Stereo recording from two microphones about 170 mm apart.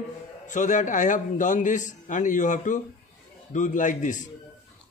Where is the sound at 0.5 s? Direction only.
45° left (ahead or behind).